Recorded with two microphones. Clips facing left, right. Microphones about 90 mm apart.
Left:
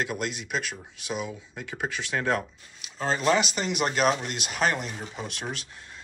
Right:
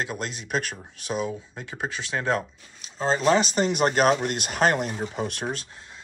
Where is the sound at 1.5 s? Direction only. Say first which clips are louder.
Even; 25° right (ahead or behind).